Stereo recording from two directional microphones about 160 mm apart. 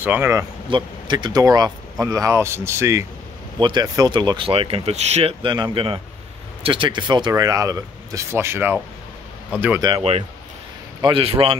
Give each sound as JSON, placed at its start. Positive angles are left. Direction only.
{"t": 0.0, "sound": "speech", "side_deg": -10}
{"t": 0.7, "sound": "speech", "side_deg": -30}
{"t": 3.5, "sound": "speech", "side_deg": -30}
{"t": 9.8, "sound": "speech", "side_deg": -30}